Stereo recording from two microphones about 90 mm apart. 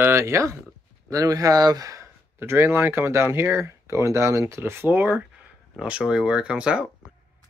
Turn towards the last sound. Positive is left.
turn(degrees=-10)  # may be behind; listen again after turning